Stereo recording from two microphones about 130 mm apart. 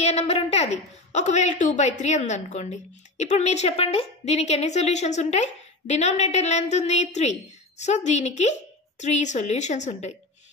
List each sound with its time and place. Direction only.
0.0 s a woman's voice: 55° left (ahead or behind)